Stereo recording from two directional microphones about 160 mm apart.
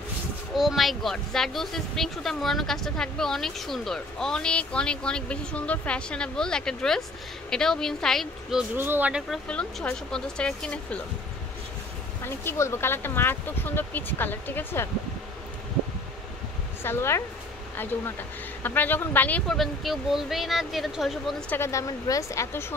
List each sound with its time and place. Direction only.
0.6 s speech: centre (ahead or behind)
8.7 s speech: 15° right (ahead or behind)
9.5 s speech: 5° left (ahead or behind)
12.3 s speech: 15° left (ahead or behind)
16.8 s speech: 15° left (ahead or behind)
18.6 s speech: 10° left (ahead or behind)
21.5 s speech: 20° left (ahead or behind)